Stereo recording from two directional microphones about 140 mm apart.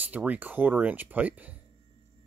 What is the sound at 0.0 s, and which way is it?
Speech, 10° right (ahead or behind).